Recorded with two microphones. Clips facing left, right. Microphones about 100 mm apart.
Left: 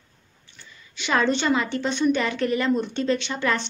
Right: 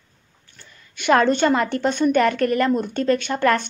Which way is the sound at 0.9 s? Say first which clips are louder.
Right 6 dB; 50° right (ahead or behind).